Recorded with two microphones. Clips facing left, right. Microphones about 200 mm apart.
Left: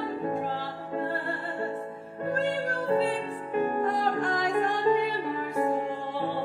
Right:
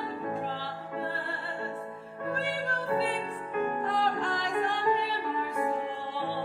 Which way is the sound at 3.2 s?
25° left (ahead or behind).